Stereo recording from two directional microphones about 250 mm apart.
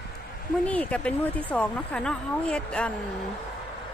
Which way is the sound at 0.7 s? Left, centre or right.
Centre.